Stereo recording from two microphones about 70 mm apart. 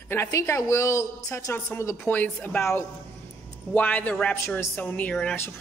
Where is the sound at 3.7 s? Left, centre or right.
Left.